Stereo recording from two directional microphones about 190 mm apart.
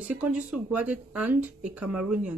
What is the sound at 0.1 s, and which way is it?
Speech, 5° right (ahead or behind).